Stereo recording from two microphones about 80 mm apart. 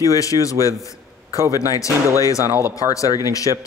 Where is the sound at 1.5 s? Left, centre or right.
Left.